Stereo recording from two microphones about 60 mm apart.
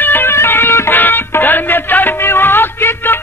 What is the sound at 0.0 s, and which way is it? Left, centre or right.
Music, left.